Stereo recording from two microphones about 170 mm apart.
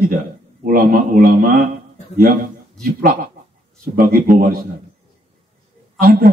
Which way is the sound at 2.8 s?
60° right (ahead or behind).